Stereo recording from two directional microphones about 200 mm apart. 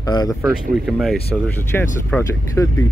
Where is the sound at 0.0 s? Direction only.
20° left (ahead or behind).